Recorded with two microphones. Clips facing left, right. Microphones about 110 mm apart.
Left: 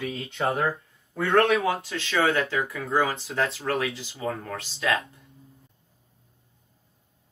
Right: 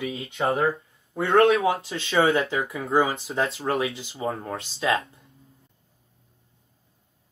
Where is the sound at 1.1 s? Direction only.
25° right (ahead or behind).